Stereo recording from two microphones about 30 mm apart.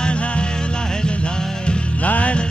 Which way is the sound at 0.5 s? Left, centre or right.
Left.